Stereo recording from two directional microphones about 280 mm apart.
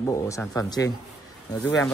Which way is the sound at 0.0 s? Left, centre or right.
Centre.